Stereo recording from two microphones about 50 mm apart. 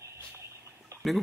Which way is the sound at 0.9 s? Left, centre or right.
Right.